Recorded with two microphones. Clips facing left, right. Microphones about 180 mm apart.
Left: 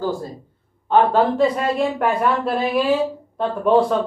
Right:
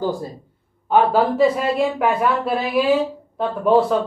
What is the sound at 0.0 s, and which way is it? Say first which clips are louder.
A woman's voice: right 1 dB; 15° right (ahead or behind).